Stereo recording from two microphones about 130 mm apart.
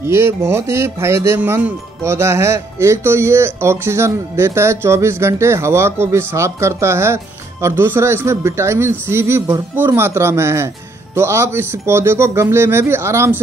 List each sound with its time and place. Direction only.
0.0 s speech: 20° right (ahead or behind)